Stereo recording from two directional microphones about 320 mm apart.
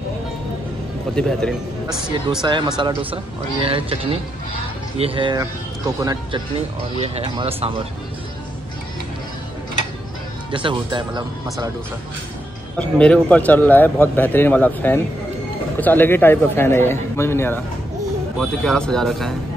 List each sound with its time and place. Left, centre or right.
1.1 s a man's voice: centre
2.4 s speech: centre
10.5 s speech: centre
12.7 s a man's voice: centre